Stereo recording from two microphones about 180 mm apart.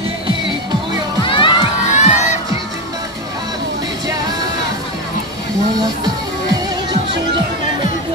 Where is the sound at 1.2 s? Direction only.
30° left (ahead or behind).